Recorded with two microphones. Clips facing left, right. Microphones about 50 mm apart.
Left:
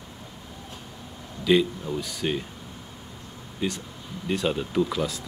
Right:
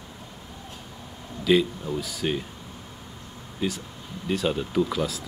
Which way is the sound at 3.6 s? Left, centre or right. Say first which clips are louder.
Even; centre.